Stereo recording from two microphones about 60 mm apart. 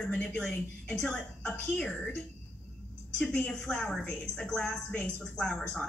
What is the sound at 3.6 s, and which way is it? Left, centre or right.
A woman's voice, centre.